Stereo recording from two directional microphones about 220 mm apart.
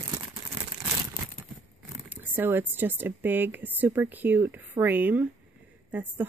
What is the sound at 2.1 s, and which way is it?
A woman's voice, 10° right (ahead or behind).